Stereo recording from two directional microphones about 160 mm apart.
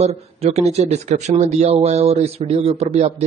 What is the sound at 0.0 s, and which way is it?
Speech, 40° right (ahead or behind).